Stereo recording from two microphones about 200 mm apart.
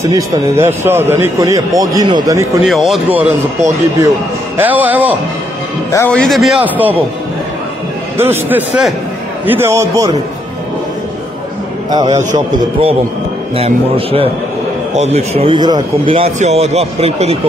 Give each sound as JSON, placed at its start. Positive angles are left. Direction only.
{"t": 0.0, "sound": "a man's voice", "side_deg": -15}
{"t": 2.6, "sound": "a man's voice", "side_deg": 0}
{"t": 4.6, "sound": "a man's voice", "side_deg": -10}
{"t": 5.9, "sound": "a man's voice", "side_deg": 10}
{"t": 8.2, "sound": "a man's voice", "side_deg": -10}
{"t": 12.1, "sound": "a man's voice", "side_deg": -40}